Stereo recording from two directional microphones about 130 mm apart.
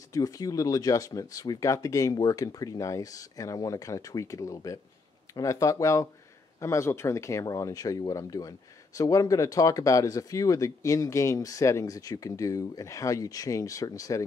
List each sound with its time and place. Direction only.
0.1 s speech: 25° left (ahead or behind)